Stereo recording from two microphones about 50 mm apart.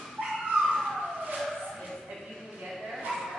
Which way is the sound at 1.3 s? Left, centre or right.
Centre.